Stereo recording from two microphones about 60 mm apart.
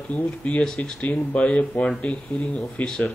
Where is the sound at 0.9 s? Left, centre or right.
Left.